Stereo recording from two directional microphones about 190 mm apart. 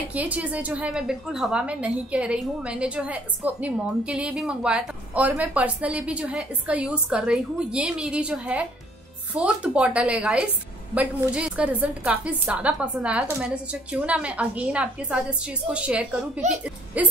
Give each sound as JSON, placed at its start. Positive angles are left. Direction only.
{"t": 0.1, "sound": "a woman's voice", "side_deg": -10}
{"t": 16.4, "sound": "a woman's voice", "side_deg": -40}
{"t": 17.0, "sound": "a woman's voice", "side_deg": -10}